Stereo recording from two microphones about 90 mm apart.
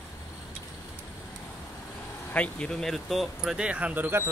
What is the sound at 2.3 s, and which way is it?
Speech, 10° left (ahead or behind).